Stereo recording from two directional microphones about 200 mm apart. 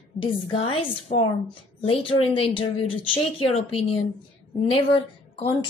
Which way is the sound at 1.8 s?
25° left (ahead or behind).